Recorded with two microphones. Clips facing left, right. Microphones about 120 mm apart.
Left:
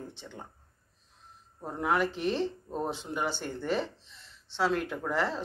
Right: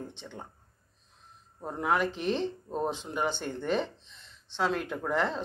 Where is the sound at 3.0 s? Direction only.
5° left (ahead or behind).